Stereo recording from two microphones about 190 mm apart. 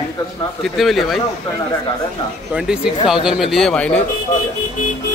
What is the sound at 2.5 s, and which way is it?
A man's voice, 5° right (ahead or behind).